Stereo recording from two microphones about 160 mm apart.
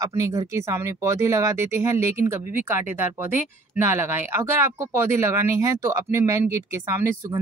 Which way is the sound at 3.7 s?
15° right (ahead or behind).